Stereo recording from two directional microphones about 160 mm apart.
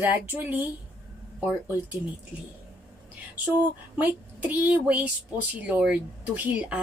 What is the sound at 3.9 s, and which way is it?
A woman's voice, 10° right (ahead or behind).